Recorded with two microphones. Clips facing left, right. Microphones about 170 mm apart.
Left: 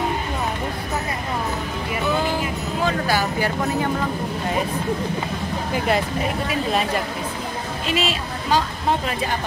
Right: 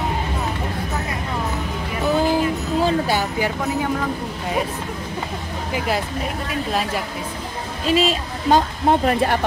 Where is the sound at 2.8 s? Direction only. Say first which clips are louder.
Right 1 dB; 25° right (ahead or behind).